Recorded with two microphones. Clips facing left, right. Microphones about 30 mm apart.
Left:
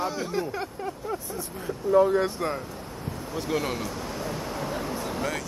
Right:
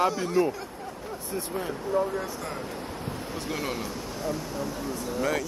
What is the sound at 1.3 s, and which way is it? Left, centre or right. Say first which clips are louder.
Speech: right 4 dB; right.